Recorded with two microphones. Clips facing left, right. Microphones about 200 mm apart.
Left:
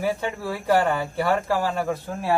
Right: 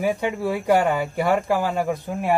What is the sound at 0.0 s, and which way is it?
Speech, 20° right (ahead or behind).